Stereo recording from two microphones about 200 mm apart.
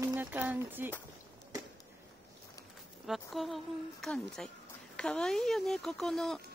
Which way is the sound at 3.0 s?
Centre (ahead or behind).